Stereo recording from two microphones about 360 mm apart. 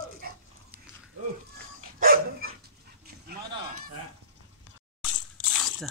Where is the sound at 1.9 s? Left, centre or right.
Right.